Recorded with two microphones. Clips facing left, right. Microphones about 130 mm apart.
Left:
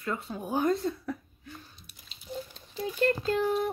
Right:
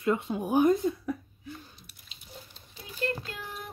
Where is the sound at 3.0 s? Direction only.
35° left (ahead or behind).